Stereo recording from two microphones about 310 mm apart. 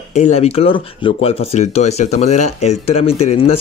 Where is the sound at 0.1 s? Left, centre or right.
Left.